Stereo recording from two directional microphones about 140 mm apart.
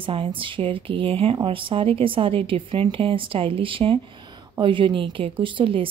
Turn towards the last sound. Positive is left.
turn(degrees=-40)  # may be behind; listen again after turning